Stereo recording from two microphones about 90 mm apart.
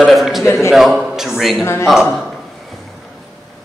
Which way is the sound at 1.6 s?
30° left (ahead or behind).